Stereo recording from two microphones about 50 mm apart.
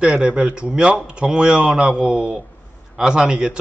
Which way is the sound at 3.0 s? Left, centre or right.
Centre.